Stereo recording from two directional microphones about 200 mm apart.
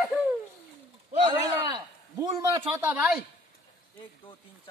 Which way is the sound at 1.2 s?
20° right (ahead or behind).